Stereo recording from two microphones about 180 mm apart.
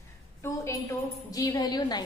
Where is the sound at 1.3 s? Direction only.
20° left (ahead or behind).